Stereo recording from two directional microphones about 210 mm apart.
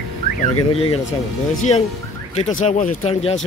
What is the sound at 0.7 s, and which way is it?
Speech, 25° left (ahead or behind).